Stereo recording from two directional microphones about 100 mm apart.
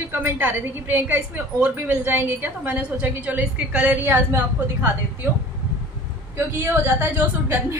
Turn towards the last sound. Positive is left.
turn(degrees=-25)  # may be behind; listen again after turning